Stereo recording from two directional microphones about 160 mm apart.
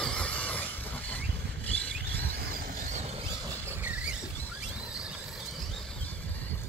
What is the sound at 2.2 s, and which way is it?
Vehicle, 65° right (ahead or behind).